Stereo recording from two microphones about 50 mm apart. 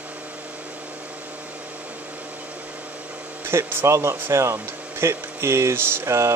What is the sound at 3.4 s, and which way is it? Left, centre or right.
Speech, right.